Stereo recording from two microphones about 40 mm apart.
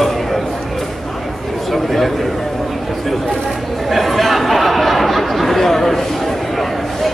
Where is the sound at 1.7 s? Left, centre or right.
Centre.